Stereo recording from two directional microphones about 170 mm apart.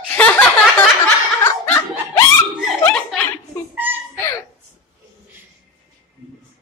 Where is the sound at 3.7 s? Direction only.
10° right (ahead or behind).